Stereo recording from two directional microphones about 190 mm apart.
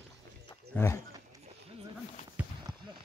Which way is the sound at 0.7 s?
10° left (ahead or behind).